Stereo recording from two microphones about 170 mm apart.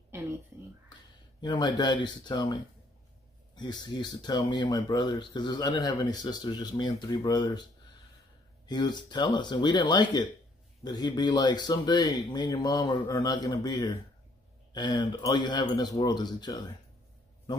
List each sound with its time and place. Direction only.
1.4 s speech: 25° left (ahead or behind)
8.6 s speech: 25° left (ahead or behind)